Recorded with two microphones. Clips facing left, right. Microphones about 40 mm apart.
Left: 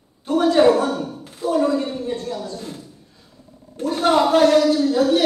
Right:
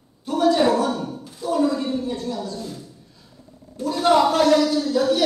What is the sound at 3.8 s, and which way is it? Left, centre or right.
Speech, left.